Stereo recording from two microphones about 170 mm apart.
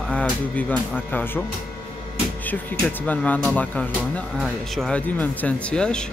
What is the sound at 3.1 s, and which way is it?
Speech, 5° left (ahead or behind).